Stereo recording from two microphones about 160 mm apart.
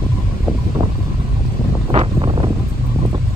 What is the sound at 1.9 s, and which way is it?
Wind, 35° right (ahead or behind).